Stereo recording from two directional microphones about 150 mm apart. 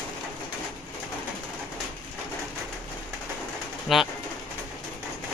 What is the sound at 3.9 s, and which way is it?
Speech, centre (ahead or behind).